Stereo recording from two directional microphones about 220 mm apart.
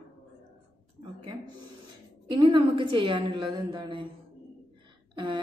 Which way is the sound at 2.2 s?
20° right (ahead or behind).